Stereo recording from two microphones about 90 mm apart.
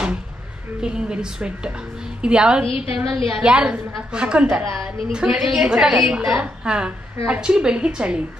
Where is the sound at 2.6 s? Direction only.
90° left.